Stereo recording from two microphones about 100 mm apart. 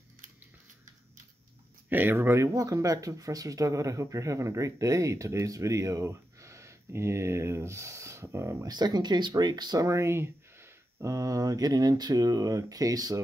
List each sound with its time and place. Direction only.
1.9 s speech: 20° right (ahead or behind)
8.6 s speech: 45° right (ahead or behind)
9.8 s speech: 30° right (ahead or behind)